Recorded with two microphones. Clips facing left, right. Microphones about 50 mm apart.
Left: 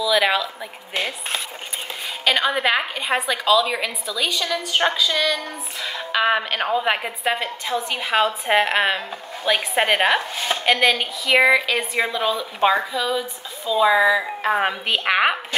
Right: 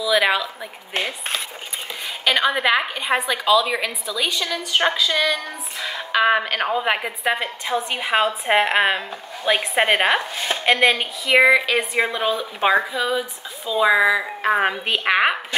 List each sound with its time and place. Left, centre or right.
0.0 s music: centre
2.2 s a woman's voice: centre
3.3 s music: centre
7.3 s music: centre
11.7 s a woman's voice: right
12.2 s music: centre
14.6 s a woman's voice: centre